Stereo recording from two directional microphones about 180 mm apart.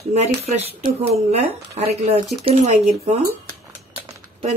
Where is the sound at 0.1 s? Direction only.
35° right (ahead or behind).